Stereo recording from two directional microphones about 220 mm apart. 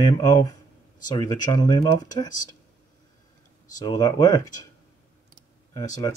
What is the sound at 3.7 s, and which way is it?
Speech, 20° left (ahead or behind).